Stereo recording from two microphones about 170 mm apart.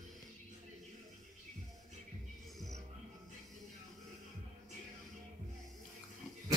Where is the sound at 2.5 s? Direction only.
Centre (ahead or behind).